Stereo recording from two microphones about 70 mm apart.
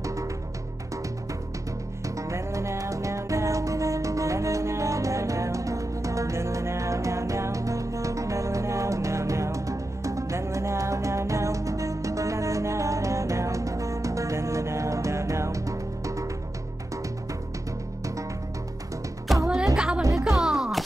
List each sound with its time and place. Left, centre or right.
0.0 s music: right
2.0 s music: right
19.5 s music: centre
20.0 s music: right
20.2 s music: centre